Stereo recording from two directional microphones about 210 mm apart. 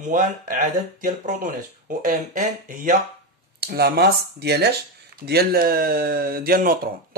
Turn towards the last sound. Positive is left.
turn(degrees=-45)  # may be behind; listen again after turning